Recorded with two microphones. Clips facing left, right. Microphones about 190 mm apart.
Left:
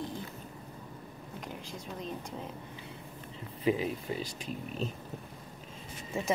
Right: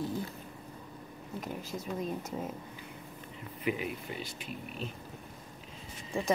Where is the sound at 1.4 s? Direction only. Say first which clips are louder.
Right 4 dB; 5° right (ahead or behind).